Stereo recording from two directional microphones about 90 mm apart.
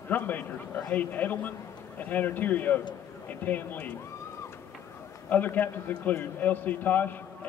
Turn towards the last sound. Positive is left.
turn(degrees=20)  # may be behind; listen again after turning